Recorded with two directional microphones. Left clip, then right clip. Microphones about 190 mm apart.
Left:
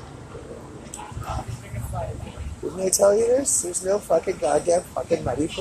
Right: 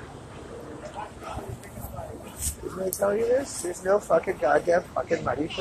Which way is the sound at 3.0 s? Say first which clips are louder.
Left 8 dB; 40° left (ahead or behind).